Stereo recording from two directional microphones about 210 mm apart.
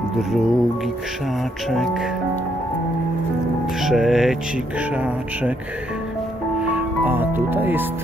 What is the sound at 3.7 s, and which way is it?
Music, centre (ahead or behind).